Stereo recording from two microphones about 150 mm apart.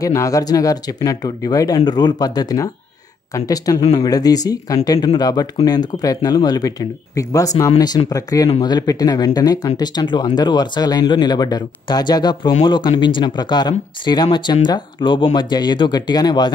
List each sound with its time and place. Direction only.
0.0 s speech: 20° left (ahead or behind)